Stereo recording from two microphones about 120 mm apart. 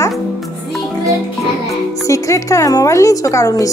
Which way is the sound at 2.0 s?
25° left (ahead or behind).